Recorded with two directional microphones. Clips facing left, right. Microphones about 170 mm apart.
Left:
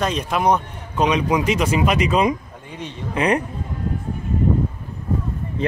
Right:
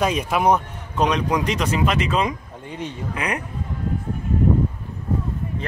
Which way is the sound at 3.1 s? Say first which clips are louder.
Left 9 dB; 30° left (ahead or behind).